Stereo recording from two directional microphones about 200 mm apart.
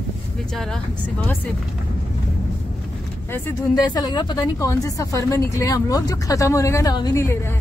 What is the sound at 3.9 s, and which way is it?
Speech, 20° left (ahead or behind).